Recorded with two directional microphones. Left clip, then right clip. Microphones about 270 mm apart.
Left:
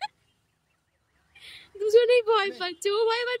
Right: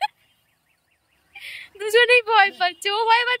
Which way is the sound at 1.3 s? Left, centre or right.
Centre.